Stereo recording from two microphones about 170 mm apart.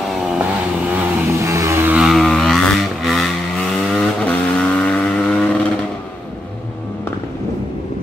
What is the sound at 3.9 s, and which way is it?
Vehicle, 5° left (ahead or behind).